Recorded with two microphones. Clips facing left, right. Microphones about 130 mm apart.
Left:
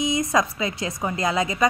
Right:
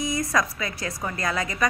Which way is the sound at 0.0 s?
20° left (ahead or behind).